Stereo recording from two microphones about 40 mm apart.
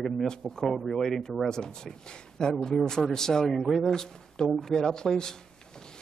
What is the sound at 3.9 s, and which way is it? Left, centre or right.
Speech, centre.